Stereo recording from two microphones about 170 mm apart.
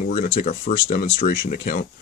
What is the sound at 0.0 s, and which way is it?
Speech, 50° left (ahead or behind).